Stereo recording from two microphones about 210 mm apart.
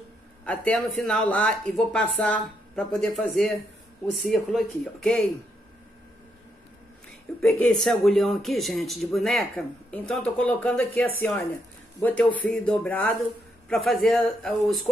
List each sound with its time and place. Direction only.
0.5 s speech: 5° left (ahead or behind)
7.4 s speech: 5° left (ahead or behind)